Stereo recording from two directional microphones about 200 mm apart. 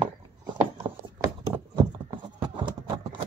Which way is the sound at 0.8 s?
15° right (ahead or behind).